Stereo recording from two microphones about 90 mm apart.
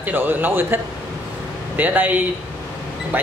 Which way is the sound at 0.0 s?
20° right (ahead or behind).